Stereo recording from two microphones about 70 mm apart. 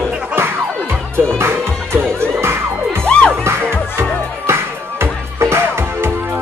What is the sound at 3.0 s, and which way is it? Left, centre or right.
Music, centre.